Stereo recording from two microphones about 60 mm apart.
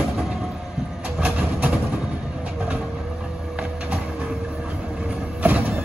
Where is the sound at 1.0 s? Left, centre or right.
Right.